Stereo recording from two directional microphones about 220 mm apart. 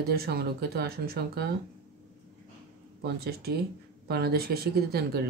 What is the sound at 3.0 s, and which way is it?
Speech, 45° right (ahead or behind).